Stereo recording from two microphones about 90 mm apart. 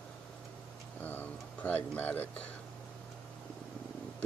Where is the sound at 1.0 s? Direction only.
20° left (ahead or behind).